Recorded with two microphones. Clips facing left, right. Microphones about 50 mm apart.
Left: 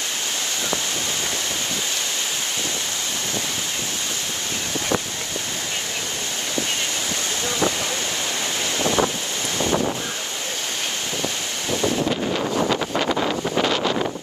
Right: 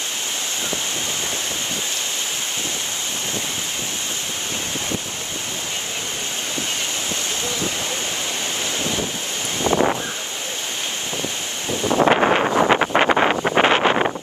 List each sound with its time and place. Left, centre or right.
7.4 s a sound: left
8.8 s wind noise: left
9.6 s wind noise: right
12.0 s wind noise: right
12.4 s wind noise: right